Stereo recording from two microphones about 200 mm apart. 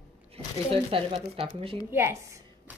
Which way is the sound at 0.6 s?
25° right (ahead or behind).